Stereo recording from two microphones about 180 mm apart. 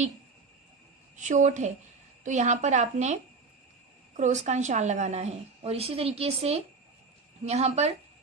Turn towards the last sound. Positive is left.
turn(degrees=-35)  # may be behind; listen again after turning